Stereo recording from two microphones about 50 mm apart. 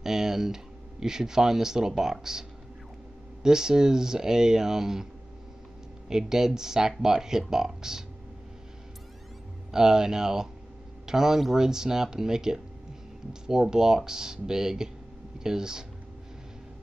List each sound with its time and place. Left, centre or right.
0.0 s speech: centre
3.4 s speech: centre
6.0 s speech: centre
9.7 s speech: centre